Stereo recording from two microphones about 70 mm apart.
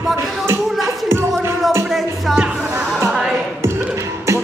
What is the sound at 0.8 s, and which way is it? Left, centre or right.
Music, right.